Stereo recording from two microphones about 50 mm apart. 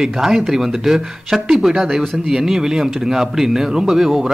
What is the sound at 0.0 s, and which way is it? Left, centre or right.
Speech, centre.